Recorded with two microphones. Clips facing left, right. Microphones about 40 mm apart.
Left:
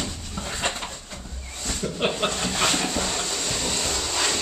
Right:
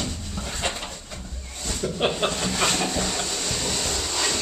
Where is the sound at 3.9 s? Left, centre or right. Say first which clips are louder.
Left 1 dB; centre.